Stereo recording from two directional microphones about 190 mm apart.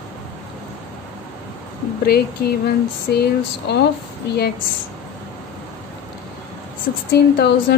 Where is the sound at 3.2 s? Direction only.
60° left (ahead or behind).